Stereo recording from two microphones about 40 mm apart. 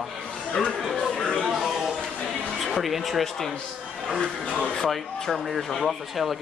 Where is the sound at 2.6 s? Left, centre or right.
Centre.